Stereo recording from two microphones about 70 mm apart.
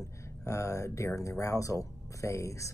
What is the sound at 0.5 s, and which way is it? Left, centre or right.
Speech, left.